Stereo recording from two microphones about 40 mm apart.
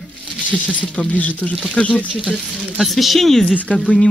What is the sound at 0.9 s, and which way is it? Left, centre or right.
Speech, left.